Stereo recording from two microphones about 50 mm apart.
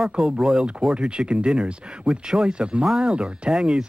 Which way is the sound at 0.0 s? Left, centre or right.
Centre.